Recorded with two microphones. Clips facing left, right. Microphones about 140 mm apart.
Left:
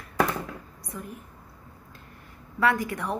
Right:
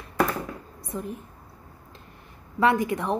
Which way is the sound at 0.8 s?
25° right (ahead or behind).